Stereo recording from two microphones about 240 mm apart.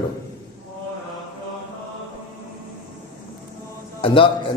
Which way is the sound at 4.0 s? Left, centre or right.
Left.